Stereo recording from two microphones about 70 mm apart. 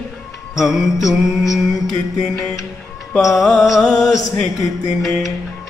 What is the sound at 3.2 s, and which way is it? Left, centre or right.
Mantra, centre.